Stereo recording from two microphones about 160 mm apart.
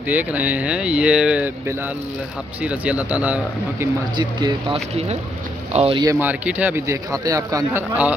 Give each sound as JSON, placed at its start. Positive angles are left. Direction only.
{"t": 0.1, "sound": "a man's voice", "side_deg": -10}
{"t": 4.2, "sound": "speech", "side_deg": -30}
{"t": 6.0, "sound": "a man's voice", "side_deg": -10}
{"t": 7.9, "sound": "a man's voice", "side_deg": -10}